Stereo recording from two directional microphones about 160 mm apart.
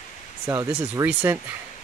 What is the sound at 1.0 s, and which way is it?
Speech, 10° right (ahead or behind).